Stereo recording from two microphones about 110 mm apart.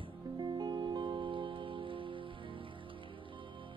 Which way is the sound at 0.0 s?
40° right (ahead or behind).